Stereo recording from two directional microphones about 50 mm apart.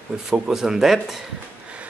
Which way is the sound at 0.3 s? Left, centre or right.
Centre.